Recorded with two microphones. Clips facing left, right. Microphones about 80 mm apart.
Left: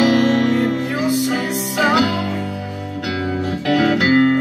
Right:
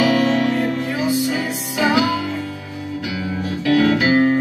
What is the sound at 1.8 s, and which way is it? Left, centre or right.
Music, left.